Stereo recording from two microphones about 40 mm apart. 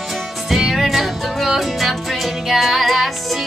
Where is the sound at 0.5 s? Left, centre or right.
Centre.